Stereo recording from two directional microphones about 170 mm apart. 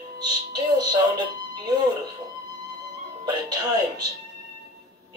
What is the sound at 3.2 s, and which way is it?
Speech, 25° right (ahead or behind).